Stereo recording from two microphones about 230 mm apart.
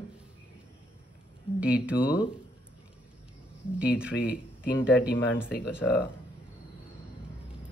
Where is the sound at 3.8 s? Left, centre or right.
Centre.